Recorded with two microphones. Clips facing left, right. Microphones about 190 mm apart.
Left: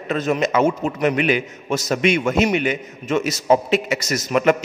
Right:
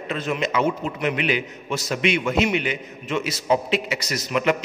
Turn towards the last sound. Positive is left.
turn(degrees=50)  # may be behind; listen again after turning